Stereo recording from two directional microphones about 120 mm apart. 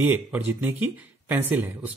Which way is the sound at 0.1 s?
15° right (ahead or behind).